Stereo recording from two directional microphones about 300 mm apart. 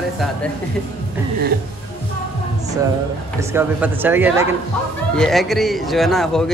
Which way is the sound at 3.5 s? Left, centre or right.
Centre.